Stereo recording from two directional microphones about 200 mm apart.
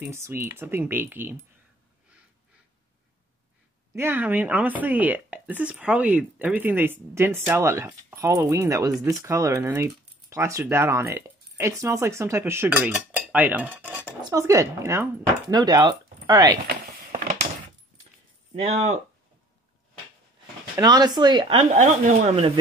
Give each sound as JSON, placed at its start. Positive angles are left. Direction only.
{"t": 0.0, "sound": "a woman's voice", "side_deg": -10}
{"t": 3.9, "sound": "a woman's voice", "side_deg": -10}
{"t": 16.6, "sound": "a sound", "side_deg": -45}
{"t": 18.5, "sound": "speech", "side_deg": -35}
{"t": 20.7, "sound": "speech", "side_deg": -20}